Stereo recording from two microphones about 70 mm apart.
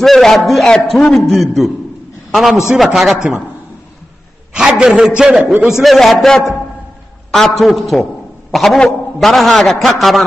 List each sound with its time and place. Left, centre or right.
0.0 s a man's voice: centre
4.6 s a man's voice: centre
5.4 s a man's voice: right
5.7 s a man's voice: centre
5.9 s a man's voice: centre